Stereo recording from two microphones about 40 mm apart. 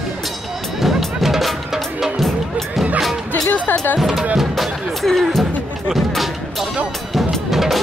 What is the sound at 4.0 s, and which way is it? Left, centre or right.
Drum, centre.